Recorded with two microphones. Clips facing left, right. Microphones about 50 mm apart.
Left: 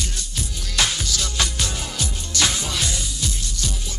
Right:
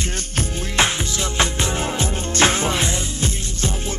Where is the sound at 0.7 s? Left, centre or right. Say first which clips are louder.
Right 3 dB; right.